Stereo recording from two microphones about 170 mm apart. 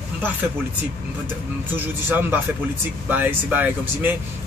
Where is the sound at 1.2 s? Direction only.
10° right (ahead or behind).